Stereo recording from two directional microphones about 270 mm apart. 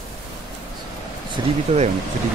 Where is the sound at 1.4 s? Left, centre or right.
Centre.